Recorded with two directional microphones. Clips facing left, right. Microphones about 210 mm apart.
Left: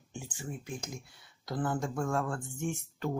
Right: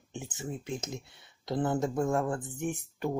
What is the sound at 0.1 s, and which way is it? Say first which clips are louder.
Speech: right 3 dB; 20° right (ahead or behind).